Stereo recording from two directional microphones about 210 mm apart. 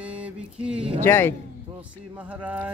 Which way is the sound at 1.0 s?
10° left (ahead or behind).